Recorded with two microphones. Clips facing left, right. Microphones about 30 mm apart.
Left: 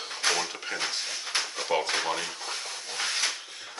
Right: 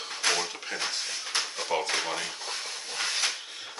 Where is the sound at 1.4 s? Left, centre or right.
Centre.